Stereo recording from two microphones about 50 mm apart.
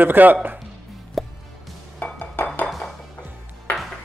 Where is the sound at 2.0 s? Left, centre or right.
Left.